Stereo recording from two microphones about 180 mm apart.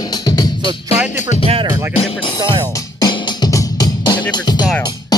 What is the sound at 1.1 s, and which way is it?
Speech, 40° left (ahead or behind).